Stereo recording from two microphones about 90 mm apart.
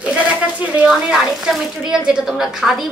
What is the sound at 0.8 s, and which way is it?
A woman's voice, 10° right (ahead or behind).